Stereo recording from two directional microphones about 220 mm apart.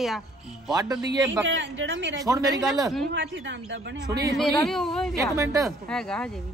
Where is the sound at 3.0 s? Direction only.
50° right (ahead or behind).